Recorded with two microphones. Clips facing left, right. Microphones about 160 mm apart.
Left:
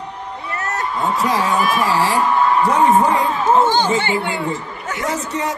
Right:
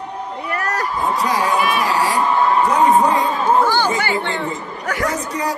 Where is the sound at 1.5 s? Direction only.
45° left (ahead or behind).